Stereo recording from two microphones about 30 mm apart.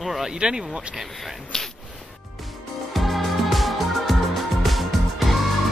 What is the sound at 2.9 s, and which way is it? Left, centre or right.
Music, centre.